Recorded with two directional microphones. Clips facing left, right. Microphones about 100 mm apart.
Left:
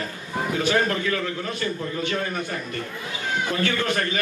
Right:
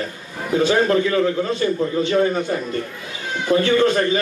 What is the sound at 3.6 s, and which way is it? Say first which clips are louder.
Speech: right 8 dB; 20° right (ahead or behind).